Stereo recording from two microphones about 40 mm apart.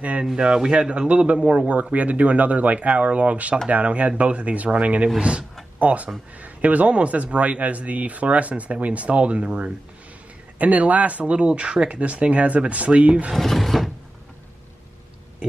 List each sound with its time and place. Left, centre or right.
0.4 s a man's voice: right
1.7 s speech: right
13.4 s a sound: centre